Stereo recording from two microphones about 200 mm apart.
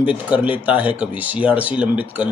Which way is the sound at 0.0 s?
5° right (ahead or behind).